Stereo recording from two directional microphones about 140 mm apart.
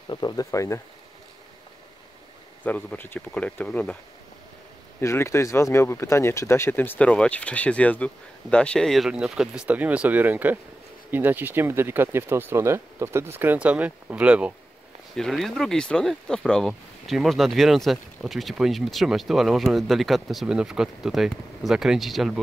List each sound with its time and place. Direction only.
0.1 s speech: 30° left (ahead or behind)
2.6 s speech: 10° left (ahead or behind)
5.0 s speech: 20° left (ahead or behind); by 14.5 s 10° right (ahead or behind)
15.1 s speech: centre (ahead or behind)